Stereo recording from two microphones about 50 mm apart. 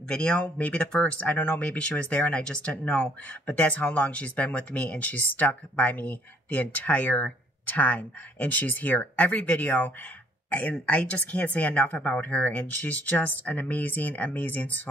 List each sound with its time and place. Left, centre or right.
0.1 s speech: left